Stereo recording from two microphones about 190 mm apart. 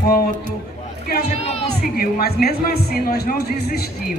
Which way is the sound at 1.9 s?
50° left (ahead or behind).